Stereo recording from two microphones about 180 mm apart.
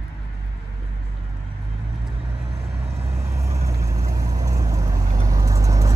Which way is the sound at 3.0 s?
15° right (ahead or behind).